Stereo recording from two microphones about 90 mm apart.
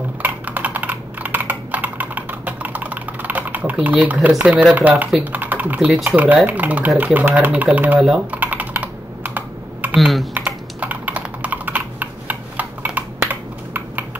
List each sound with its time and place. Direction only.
0.2 s computer keyboard: 20° right (ahead or behind)
4.4 s speech: 15° right (ahead or behind)
5.2 s typing: 20° right (ahead or behind)
5.8 s speech: 5° right (ahead or behind)
6.0 s speech: 15° right (ahead or behind)
8.0 s speech: 5° right (ahead or behind)
8.4 s computer keyboard: 15° right (ahead or behind)
9.9 s speech: centre (ahead or behind)
10.3 s computer keyboard: 15° right (ahead or behind)